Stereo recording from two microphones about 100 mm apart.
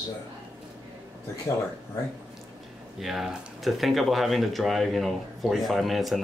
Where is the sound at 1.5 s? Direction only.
30° left (ahead or behind).